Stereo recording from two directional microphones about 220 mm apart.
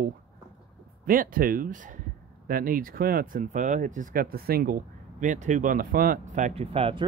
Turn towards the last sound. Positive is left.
turn(degrees=-25)  # may be behind; listen again after turning